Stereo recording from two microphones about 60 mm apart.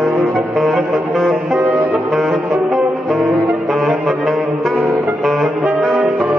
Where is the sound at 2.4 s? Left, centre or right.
Right.